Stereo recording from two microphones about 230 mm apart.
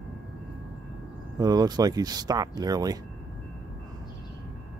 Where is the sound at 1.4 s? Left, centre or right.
Centre.